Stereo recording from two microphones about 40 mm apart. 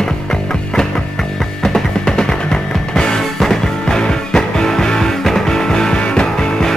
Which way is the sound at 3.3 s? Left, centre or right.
Centre.